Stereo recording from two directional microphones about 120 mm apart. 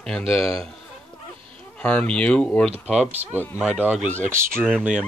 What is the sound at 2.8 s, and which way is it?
Speech, 10° right (ahead or behind).